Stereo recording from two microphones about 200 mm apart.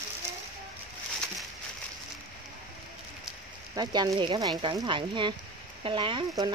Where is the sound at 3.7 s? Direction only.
20° right (ahead or behind).